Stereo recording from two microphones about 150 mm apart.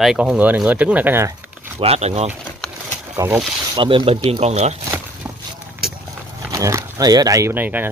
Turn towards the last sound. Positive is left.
turn(degrees=-10)  # may be behind; listen again after turning